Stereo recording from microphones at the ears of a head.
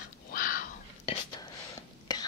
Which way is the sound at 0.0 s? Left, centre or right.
Left.